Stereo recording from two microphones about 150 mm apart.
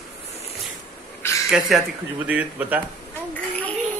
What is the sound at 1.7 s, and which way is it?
A child's voice, centre (ahead or behind).